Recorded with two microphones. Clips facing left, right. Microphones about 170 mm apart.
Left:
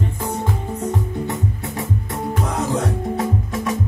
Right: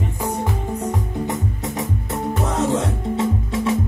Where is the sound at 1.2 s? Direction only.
25° right (ahead or behind).